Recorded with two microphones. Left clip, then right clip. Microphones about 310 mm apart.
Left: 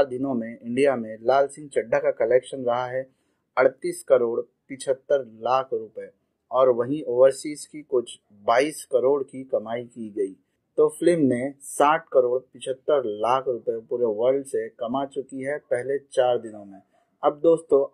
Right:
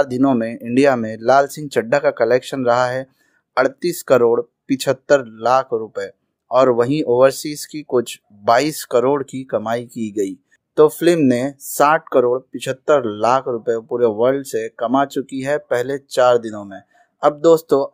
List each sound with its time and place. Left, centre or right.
0.0 s speech: right
17.2 s speech: right